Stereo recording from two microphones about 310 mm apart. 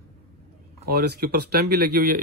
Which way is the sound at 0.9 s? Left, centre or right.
Right.